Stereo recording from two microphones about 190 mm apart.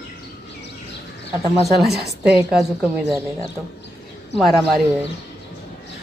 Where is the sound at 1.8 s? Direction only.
60° right (ahead or behind).